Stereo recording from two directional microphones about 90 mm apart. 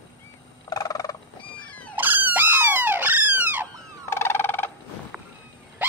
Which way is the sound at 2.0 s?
20° right (ahead or behind).